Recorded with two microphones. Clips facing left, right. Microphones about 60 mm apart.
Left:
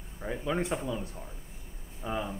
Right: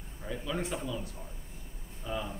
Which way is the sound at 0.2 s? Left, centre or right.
Left.